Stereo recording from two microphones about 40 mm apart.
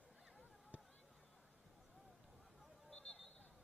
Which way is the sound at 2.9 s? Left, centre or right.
Centre.